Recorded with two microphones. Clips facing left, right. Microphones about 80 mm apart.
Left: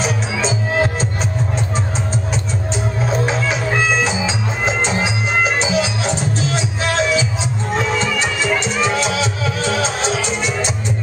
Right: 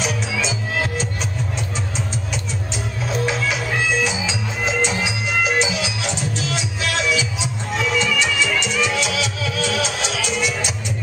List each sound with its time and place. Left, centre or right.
0.0 s music: left
3.1 s music: left